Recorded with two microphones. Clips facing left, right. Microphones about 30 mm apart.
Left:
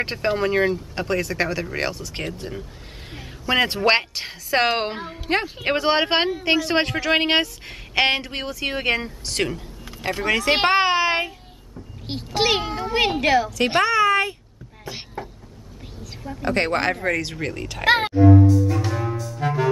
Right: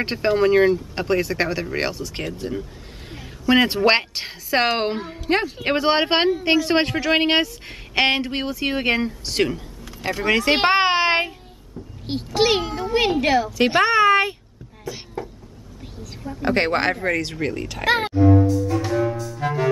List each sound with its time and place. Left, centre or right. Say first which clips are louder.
0.0 s speech: right 3 dB; centre
2.2 s a woman's voice: right 5 dB; centre
10.8 s child singing: right 1 dB; right
12.4 s speech: right 1 dB; centre
13.8 s speech: right 3 dB; right
14.9 s speech: right 2 dB; left
16.0 s a sound: right 2 dB; centre
16.4 s speech: right 1 dB; centre
16.9 s speech: right 1 dB; centre
18.5 s music: even; centre